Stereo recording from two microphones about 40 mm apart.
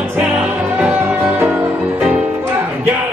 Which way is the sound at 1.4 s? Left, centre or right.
Right.